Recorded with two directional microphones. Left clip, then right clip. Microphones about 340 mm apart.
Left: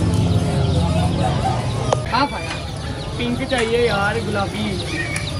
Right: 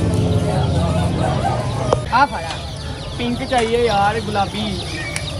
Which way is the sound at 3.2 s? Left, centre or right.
Right.